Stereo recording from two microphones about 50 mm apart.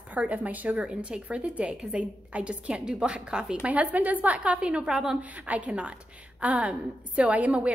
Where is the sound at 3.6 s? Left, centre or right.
Right; by 5.2 s centre.